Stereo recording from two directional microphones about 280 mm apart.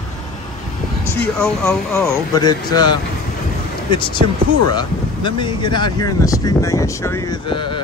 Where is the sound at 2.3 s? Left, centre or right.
Centre.